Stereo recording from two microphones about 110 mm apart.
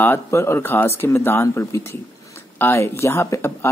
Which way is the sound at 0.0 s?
20° left (ahead or behind).